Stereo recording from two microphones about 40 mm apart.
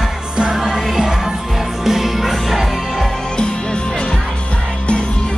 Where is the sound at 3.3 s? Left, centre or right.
Left.